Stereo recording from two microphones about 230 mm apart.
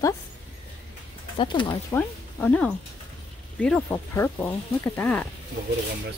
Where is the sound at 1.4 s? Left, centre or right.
Left.